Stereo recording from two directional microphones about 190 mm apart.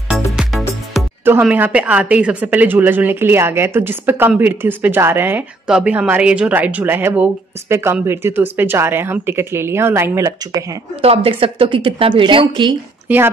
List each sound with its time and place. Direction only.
0.1 s music: centre (ahead or behind)
1.2 s speech: 10° right (ahead or behind)
11.0 s a woman's voice: 30° right (ahead or behind)
13.1 s speech: 10° right (ahead or behind)